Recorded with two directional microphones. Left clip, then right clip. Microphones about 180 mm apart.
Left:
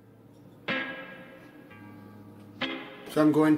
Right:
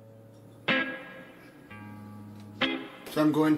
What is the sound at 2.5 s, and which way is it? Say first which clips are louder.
Music: right 4 dB; centre (ahead or behind).